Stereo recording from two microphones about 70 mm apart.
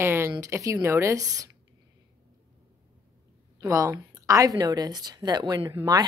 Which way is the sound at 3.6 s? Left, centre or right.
Right.